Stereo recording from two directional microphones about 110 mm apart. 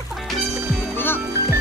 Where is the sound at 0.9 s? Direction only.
20° left (ahead or behind).